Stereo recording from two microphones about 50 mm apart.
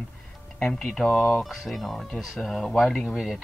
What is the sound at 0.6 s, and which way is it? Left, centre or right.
Speech, left.